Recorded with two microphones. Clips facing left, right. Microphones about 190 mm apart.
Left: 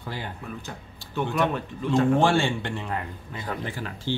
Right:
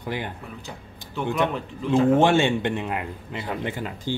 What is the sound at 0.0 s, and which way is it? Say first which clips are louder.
Speech: right 5 dB; 15° right (ahead or behind).